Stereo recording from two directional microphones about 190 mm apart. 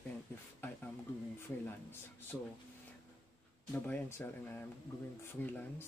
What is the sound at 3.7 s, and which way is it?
Speech, 10° left (ahead or behind).